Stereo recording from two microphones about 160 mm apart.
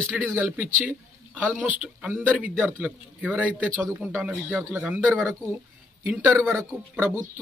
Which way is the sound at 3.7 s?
15° right (ahead or behind).